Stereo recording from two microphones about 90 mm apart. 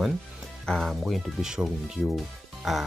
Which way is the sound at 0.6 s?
10° left (ahead or behind).